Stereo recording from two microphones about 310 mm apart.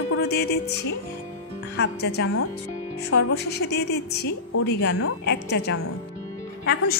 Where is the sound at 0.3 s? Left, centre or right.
Left.